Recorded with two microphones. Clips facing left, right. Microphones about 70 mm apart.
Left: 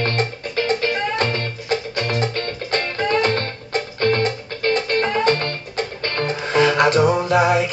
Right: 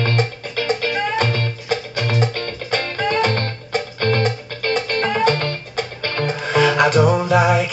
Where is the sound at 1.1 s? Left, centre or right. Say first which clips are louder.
Right 1 dB; left.